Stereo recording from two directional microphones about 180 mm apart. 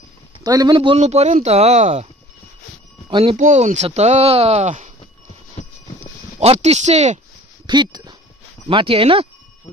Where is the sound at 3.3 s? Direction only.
45° right (ahead or behind).